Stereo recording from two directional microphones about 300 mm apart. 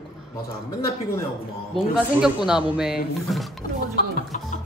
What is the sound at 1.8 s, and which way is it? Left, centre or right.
Speech, centre.